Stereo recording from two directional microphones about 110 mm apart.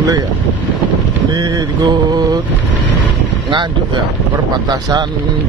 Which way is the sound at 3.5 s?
45° right (ahead or behind).